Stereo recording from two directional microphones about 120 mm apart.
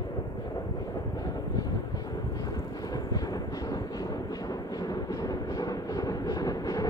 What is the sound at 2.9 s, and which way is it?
Thunder, 30° left (ahead or behind).